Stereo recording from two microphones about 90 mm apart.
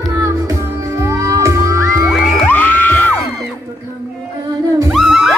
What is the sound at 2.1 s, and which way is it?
Music, centre (ahead or behind).